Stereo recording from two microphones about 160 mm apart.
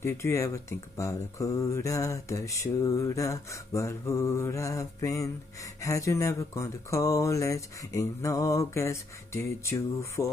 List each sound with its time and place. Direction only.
0.0 s speech: 20° left (ahead or behind)